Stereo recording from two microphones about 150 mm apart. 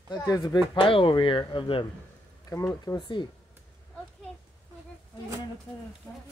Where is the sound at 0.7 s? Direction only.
35° left (ahead or behind).